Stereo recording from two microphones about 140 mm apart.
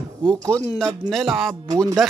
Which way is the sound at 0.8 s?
Centre (ahead or behind).